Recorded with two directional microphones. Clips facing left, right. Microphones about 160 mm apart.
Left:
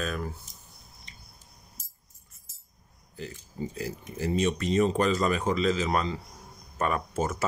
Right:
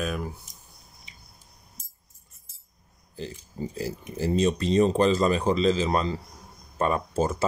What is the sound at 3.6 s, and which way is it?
Speech, 30° right (ahead or behind).